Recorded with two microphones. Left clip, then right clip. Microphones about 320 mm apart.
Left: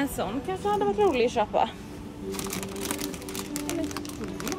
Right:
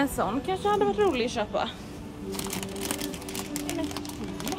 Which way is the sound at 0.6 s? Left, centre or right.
Right.